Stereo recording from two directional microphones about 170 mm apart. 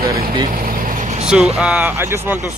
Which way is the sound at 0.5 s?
55° right (ahead or behind).